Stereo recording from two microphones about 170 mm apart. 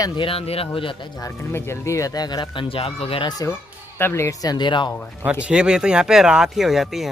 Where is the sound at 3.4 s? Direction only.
15° left (ahead or behind).